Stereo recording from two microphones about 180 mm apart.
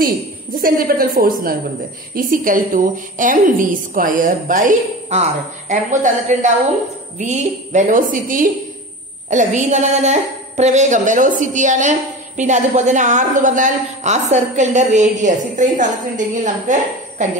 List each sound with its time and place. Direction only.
0.6 s a woman's voice: 50° right (ahead or behind)